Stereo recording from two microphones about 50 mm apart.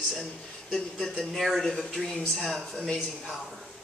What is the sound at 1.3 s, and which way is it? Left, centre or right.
Speech, centre.